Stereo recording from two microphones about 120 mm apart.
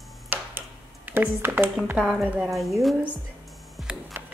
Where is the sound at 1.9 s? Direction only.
15° right (ahead or behind).